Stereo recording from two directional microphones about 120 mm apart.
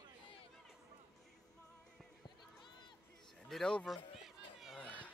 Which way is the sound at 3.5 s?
5° left (ahead or behind).